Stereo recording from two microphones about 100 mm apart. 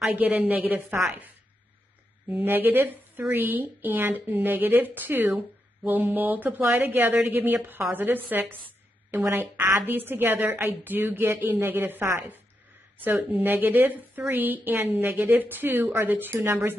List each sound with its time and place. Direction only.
0.1 s a woman's voice: 15° right (ahead or behind)
2.2 s a woman's voice: 20° right (ahead or behind)